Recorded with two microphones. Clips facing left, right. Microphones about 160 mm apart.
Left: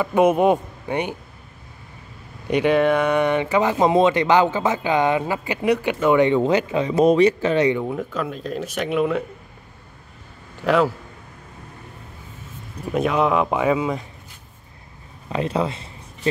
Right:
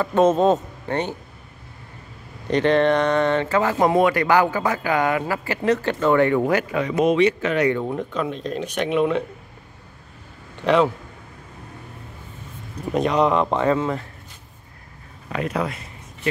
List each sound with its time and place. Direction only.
0.0 s speech: 10° left (ahead or behind)
2.5 s speech: 10° left (ahead or behind); by 7.7 s 30° left (ahead or behind)
7.8 s speech: centre (ahead or behind)
10.6 s a man's voice: 5° left (ahead or behind)
12.9 s speech: 5° left (ahead or behind)
15.2 s speech: 25° left (ahead or behind)